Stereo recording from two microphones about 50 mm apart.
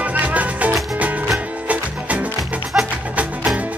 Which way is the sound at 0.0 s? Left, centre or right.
Right.